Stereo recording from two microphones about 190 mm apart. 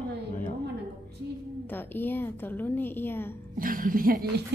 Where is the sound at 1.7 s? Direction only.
10° left (ahead or behind).